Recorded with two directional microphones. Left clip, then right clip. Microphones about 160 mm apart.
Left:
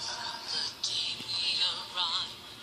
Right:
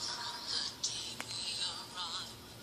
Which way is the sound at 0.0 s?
45° left (ahead or behind).